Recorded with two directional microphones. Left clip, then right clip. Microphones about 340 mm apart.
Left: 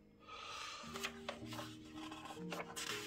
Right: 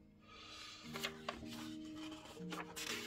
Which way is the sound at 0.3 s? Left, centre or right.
Centre.